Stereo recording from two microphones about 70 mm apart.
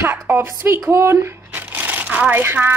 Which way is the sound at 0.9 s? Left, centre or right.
Right.